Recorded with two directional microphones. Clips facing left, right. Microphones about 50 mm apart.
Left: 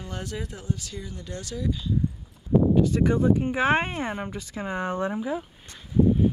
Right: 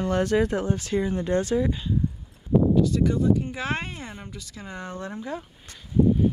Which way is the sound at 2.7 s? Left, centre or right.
Left.